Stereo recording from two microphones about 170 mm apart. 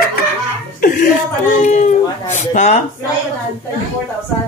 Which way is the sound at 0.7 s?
55° left (ahead or behind).